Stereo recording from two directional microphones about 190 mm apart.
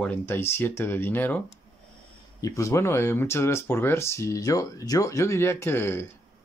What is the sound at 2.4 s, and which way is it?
Speech, 15° left (ahead or behind).